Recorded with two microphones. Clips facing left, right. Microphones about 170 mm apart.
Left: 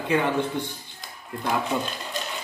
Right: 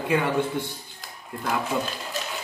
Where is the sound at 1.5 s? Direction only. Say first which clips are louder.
Left 1 dB; 5° right (ahead or behind).